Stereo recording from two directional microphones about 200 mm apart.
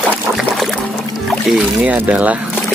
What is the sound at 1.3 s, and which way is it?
Speech, centre (ahead or behind).